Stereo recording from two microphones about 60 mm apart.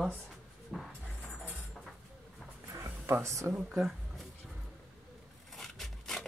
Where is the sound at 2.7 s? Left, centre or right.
Right.